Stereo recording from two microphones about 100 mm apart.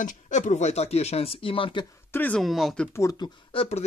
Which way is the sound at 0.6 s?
90° left.